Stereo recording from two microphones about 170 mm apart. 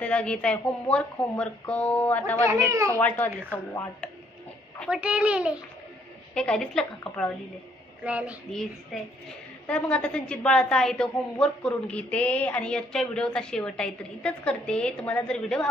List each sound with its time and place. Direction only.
0.0 s speech: 5° left (ahead or behind)
2.7 s a child's voice: 20° right (ahead or behind)
3.4 s speech: 10° left (ahead or behind)
4.7 s a child's voice: 5° right (ahead or behind)
6.3 s a woman's voice: 5° left (ahead or behind)
8.0 s a child's voice: 10° right (ahead or behind)